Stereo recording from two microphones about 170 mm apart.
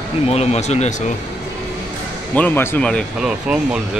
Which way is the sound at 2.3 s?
10° left (ahead or behind).